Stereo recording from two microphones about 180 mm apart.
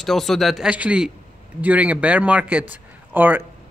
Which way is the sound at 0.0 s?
Centre (ahead or behind).